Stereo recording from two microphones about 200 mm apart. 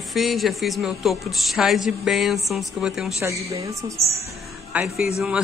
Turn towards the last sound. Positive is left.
turn(degrees=-5)  # may be behind; listen again after turning